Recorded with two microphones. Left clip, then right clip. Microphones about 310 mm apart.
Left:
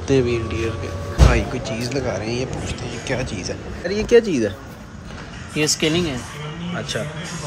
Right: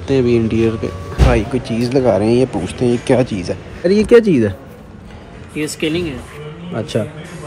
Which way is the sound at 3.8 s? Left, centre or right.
Centre.